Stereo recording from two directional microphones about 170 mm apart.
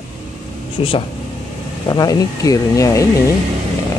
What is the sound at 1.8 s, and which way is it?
Speech, 20° left (ahead or behind).